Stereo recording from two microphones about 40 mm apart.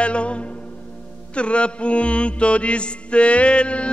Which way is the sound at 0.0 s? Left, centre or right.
Left.